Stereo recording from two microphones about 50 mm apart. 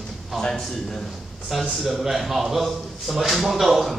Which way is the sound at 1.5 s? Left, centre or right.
Centre.